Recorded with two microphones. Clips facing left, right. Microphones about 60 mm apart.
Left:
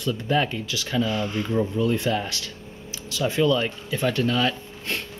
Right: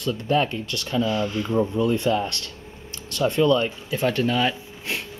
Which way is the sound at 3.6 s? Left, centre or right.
Centre.